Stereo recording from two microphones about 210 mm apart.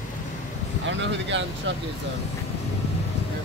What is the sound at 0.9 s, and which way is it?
Speech, 60° right (ahead or behind).